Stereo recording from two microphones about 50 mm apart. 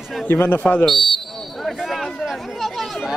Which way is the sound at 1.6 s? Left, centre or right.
Centre.